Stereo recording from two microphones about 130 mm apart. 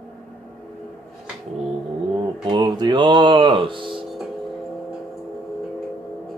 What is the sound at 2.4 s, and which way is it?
Speech, 35° right (ahead or behind).